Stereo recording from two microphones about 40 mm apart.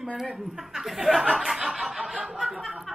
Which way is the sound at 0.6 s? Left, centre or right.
Centre.